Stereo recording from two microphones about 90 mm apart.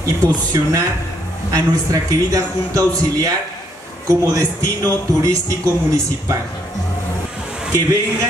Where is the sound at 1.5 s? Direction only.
40° right (ahead or behind).